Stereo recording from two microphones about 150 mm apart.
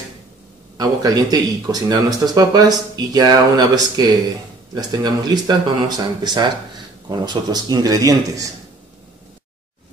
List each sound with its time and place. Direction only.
0.7 s speech: 25° right (ahead or behind)